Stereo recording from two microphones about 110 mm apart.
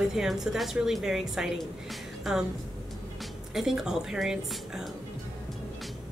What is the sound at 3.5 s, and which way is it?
Speech, 5° right (ahead or behind).